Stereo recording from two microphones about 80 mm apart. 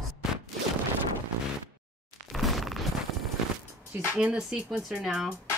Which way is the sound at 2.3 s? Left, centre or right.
Centre.